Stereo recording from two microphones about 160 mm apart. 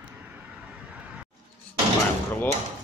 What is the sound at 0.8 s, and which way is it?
Vehicle, 5° right (ahead or behind).